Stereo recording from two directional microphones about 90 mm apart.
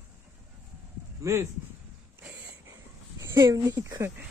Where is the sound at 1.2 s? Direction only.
30° right (ahead or behind).